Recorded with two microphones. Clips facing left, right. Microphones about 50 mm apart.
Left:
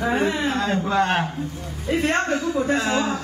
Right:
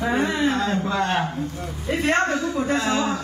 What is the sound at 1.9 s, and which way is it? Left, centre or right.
Speech, centre.